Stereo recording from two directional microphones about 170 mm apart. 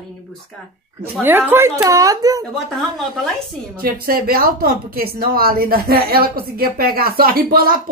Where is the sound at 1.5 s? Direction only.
15° right (ahead or behind).